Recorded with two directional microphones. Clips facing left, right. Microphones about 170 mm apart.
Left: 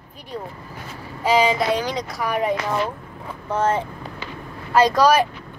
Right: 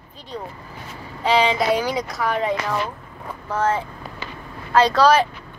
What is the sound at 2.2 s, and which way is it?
Speech, 10° left (ahead or behind).